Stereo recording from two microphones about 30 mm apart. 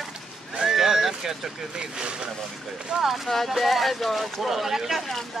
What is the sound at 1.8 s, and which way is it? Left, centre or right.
Speech, right.